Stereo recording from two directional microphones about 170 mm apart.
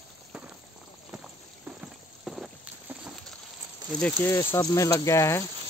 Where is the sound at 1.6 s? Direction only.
5° right (ahead or behind).